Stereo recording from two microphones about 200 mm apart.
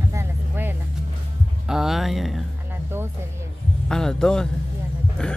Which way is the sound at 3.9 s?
5° left (ahead or behind).